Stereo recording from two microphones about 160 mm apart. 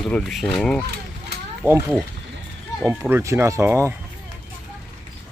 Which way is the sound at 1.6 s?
15° right (ahead or behind).